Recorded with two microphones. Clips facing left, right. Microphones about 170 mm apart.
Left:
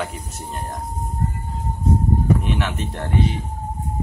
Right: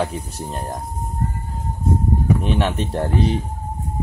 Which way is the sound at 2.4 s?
30° right (ahead or behind).